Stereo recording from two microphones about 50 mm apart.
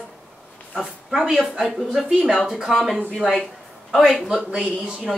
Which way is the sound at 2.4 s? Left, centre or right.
Centre.